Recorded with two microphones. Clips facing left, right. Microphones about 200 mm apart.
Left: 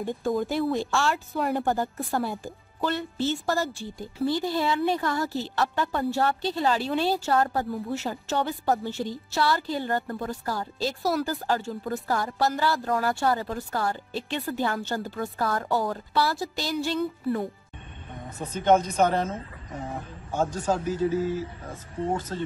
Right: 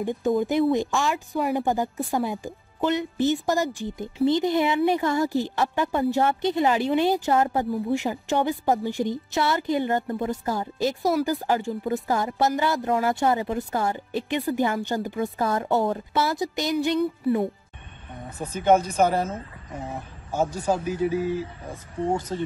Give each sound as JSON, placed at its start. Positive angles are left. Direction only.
{"t": 0.4, "sound": "speech", "side_deg": -20}